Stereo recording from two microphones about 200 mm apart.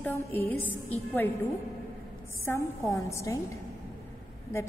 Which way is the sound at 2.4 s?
15° left (ahead or behind).